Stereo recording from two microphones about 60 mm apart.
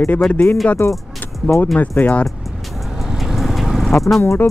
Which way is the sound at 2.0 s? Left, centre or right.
Left.